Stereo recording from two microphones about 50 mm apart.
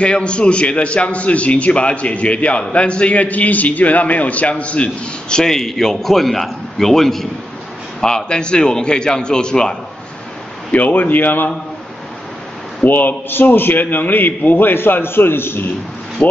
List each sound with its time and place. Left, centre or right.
0.0 s a man's voice: left; by 7.2 s centre
8.0 s a man's voice: centre
10.7 s a man's voice: left
12.8 s a man's voice: left